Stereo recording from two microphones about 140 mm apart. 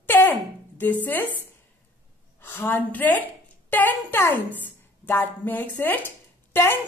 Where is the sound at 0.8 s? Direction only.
15° left (ahead or behind).